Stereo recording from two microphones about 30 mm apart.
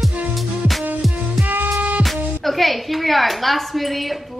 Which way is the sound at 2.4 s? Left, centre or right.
Centre.